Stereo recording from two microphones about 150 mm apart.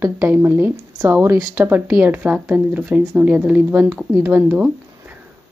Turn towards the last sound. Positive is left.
turn(degrees=-10)  # may be behind; listen again after turning